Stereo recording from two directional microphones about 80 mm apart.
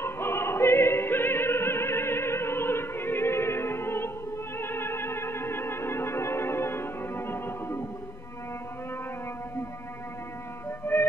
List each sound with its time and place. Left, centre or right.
0.0 s opera: left
4.6 s music: left
10.9 s music: left